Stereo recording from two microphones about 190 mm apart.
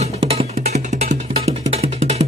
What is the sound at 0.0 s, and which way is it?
Music, 35° right (ahead or behind).